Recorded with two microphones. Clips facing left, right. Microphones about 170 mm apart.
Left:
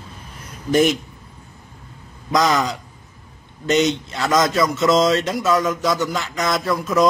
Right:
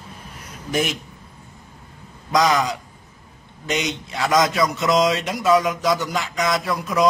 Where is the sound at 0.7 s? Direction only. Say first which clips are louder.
Left 7 dB; 5° right (ahead or behind).